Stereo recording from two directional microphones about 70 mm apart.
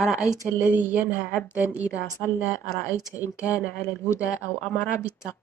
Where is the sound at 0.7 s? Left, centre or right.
Right.